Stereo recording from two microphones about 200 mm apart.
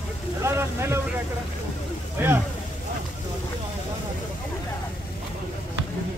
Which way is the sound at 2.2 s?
10° right (ahead or behind).